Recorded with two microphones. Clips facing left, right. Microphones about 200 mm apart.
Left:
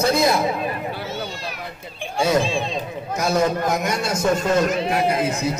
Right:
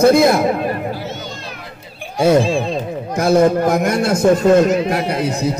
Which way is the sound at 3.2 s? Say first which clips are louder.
Right 7 dB; 55° right (ahead or behind).